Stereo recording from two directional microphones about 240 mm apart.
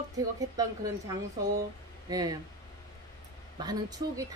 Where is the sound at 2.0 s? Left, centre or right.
Centre.